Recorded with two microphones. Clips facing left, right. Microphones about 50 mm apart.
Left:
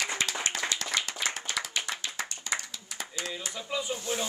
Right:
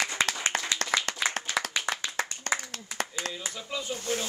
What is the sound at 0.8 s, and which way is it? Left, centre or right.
Clapping, right.